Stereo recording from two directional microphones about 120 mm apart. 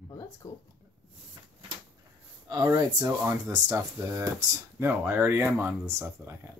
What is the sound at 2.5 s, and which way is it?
Speech, 35° right (ahead or behind).